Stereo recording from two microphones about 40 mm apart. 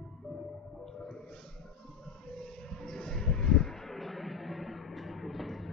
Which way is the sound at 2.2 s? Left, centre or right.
Centre.